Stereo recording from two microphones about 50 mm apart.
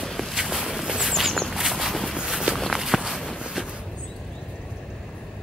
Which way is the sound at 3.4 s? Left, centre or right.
Centre.